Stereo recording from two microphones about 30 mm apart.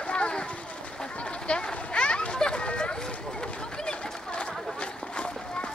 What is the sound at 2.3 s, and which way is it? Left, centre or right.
Chatter, left.